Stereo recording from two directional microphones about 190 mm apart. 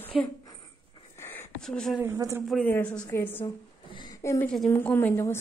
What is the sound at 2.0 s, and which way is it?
Speech, 15° right (ahead or behind).